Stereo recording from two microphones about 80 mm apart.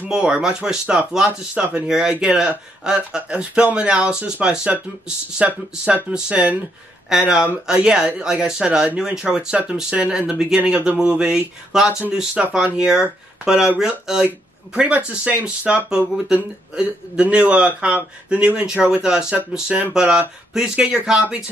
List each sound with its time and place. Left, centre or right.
0.0 s speech: centre
7.1 s speech: centre